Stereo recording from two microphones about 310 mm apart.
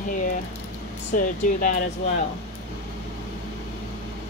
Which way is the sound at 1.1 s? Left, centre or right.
Left.